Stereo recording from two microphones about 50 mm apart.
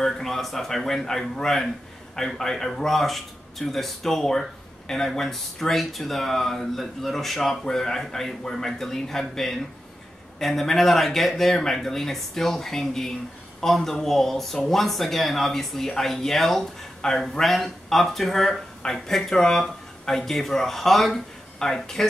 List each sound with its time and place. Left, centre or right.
0.0 s speech: centre